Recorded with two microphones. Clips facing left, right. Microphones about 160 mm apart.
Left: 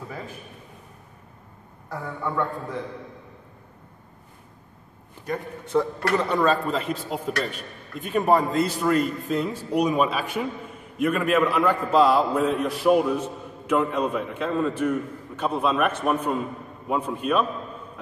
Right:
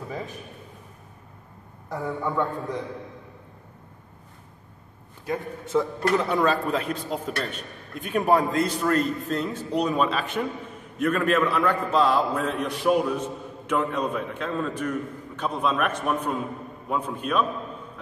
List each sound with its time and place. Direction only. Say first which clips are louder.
1.9 s a man's voice: right 2 dB; 15° right (ahead or behind)
5.3 s a man's voice: left 1 dB; centre (ahead or behind)